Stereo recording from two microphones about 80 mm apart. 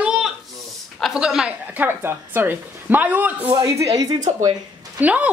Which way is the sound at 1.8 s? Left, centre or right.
Right.